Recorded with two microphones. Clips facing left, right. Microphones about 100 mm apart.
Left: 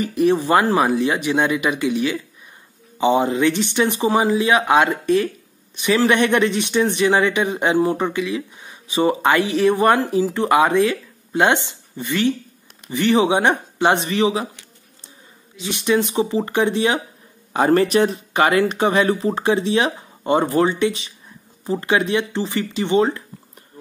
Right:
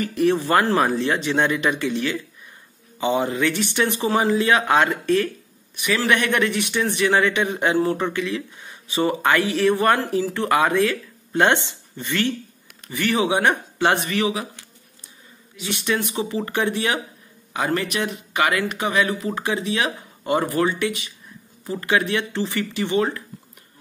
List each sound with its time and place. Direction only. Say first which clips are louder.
0.0 s a man's voice: left 2 dB; 20° left (ahead or behind)
17.5 s a man's voice: left 8 dB; 35° left (ahead or behind)